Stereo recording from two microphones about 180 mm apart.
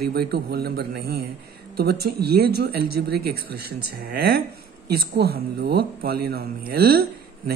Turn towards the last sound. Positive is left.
turn(degrees=-60)  # may be behind; listen again after turning